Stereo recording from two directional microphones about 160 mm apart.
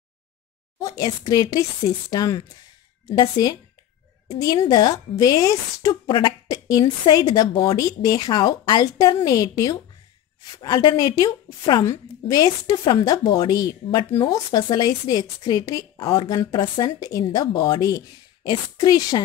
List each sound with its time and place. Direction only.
0.7 s a woman's voice: 20° left (ahead or behind)
4.6 s a woman's voice: 25° left (ahead or behind)